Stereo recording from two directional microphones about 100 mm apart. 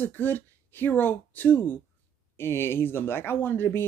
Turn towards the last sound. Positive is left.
turn(degrees=20)  # may be behind; listen again after turning